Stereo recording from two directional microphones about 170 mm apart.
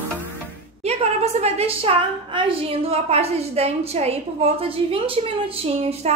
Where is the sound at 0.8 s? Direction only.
40° right (ahead or behind).